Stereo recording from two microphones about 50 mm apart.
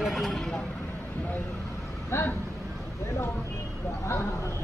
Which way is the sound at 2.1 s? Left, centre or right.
Left.